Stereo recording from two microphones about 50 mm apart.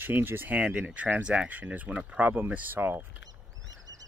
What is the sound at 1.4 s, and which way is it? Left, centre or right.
Speech, right.